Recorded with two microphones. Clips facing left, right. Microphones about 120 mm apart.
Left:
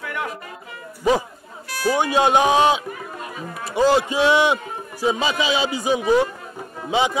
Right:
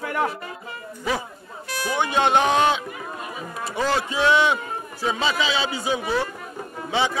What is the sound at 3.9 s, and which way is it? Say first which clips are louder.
A man's voice: left 3 dB; 15° left (ahead or behind).